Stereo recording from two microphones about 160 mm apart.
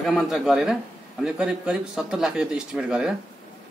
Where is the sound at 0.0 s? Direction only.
Centre (ahead or behind).